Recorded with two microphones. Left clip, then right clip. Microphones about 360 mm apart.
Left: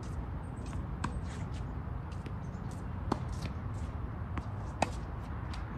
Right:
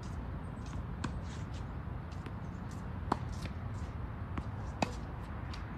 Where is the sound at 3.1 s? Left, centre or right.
Centre.